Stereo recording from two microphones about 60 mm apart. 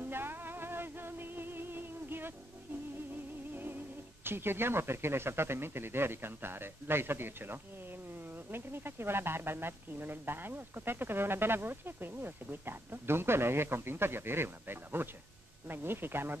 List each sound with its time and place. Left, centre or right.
0.0 s music: right
3.5 s speech: right